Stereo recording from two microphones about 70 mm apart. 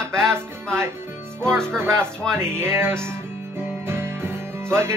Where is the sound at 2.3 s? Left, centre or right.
Right.